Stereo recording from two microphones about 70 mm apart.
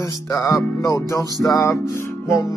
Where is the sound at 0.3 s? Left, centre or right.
Left.